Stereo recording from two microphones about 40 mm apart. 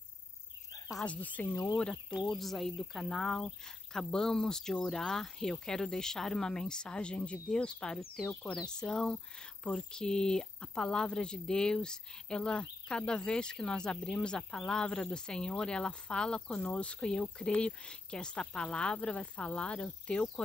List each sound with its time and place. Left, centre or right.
1.0 s speech: left
1.8 s speech: left
2.2 s speech: centre; by 20.4 s left